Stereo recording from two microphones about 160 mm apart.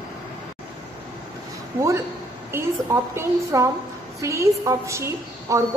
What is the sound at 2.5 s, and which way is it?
A woman's voice, 15° right (ahead or behind).